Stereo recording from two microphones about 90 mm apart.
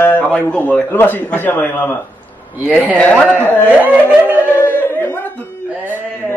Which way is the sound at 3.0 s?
15° left (ahead or behind).